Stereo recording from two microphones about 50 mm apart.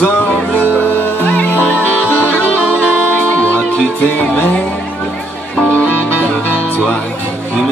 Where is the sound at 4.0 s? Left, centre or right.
Left.